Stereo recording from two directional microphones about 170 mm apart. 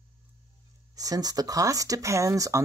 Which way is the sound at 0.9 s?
20° right (ahead or behind).